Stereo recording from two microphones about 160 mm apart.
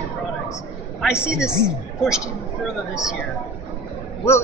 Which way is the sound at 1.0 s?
5° right (ahead or behind).